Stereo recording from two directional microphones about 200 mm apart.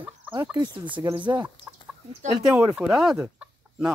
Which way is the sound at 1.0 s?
20° right (ahead or behind).